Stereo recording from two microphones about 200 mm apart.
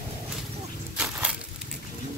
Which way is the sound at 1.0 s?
5° right (ahead or behind).